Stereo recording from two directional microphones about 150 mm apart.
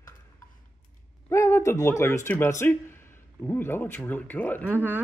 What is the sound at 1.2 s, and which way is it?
Speech, 20° left (ahead or behind).